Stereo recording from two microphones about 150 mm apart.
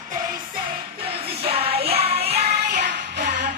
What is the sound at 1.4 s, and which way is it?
Music, 40° right (ahead or behind).